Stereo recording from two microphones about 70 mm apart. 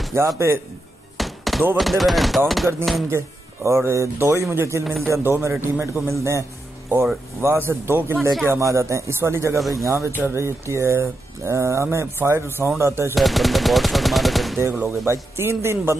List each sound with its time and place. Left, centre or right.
0.1 s speech: right
1.1 s thunk: centre
1.8 s chopping: centre
3.1 s speech: right
6.0 s speech: right
7.4 s speech: right
8.2 s chopping: centre
8.5 s speech: right
13.1 s gunshot: centre
15.0 s speech: right